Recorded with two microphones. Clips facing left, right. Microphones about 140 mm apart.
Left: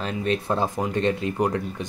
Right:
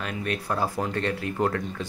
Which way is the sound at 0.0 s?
25° left (ahead or behind).